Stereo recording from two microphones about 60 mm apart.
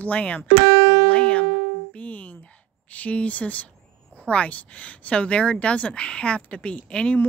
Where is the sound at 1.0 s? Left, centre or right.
Left.